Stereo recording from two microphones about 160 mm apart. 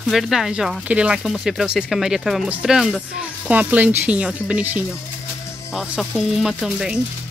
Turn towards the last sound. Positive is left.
turn(degrees=-5)  # may be behind; listen again after turning